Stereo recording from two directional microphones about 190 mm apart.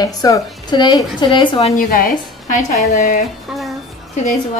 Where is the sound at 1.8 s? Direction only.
45° left (ahead or behind).